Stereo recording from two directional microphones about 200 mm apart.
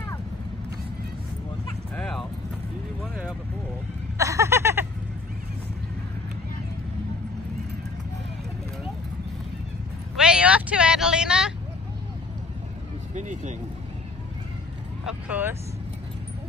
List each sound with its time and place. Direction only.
1.7 s bow-wow: 5° left (ahead or behind)
4.2 s a sound: 15° right (ahead or behind)
10.1 s vehicle: 5° right (ahead or behind)
13.1 s speech: 35° right (ahead or behind)
15.0 s speech: 10° right (ahead or behind)